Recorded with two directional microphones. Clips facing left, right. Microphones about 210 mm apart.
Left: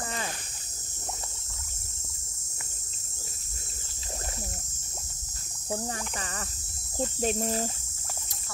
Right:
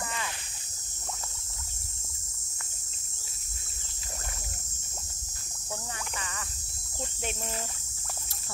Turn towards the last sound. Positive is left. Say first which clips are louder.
# left 8 dB
turn(degrees=35)  # may be behind; listen again after turning